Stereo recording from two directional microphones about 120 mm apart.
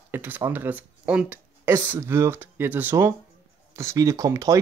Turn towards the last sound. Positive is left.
turn(degrees=-25)  # may be behind; listen again after turning